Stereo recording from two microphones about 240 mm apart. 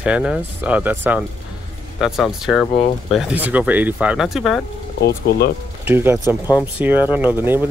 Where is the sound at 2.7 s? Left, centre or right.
Left.